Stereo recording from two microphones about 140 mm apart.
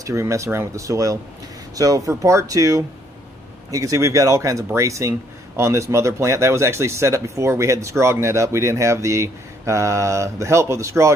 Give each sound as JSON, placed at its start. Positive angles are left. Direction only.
{"t": 0.0, "sound": "speech", "side_deg": -20}